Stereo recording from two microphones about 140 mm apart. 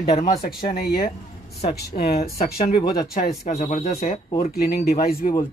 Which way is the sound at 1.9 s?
55° left (ahead or behind).